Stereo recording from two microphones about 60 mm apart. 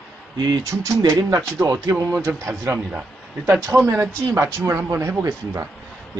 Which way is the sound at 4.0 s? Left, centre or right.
Right.